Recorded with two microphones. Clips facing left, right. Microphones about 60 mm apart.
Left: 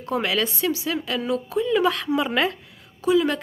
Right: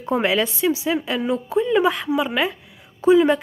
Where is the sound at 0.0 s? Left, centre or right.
Right.